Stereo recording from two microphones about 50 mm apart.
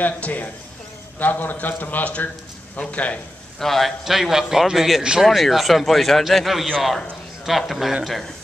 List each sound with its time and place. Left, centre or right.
0.0 s a man's voice: left
3.5 s a man's voice: centre
4.0 s a man's voice: centre